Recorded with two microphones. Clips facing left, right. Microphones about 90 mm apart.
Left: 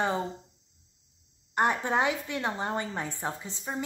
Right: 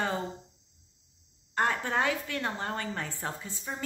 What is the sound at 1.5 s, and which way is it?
A woman's voice, 20° left (ahead or behind).